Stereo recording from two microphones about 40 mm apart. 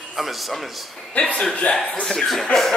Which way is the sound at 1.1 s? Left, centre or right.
Left.